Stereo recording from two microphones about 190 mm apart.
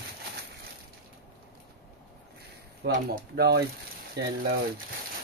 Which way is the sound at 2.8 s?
60° right (ahead or behind).